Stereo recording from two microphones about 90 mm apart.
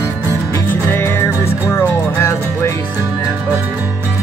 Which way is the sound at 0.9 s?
25° left (ahead or behind).